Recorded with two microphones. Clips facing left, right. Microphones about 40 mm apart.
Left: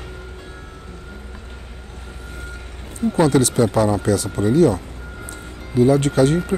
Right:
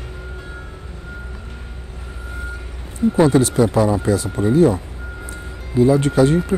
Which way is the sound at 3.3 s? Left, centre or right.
Left.